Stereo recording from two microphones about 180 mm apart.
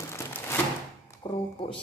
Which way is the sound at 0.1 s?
15° left (ahead or behind).